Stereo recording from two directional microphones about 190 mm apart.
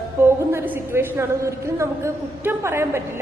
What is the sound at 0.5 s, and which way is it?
A woman's voice, 10° right (ahead or behind).